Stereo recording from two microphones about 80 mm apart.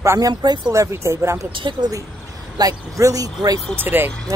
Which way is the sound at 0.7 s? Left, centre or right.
Right.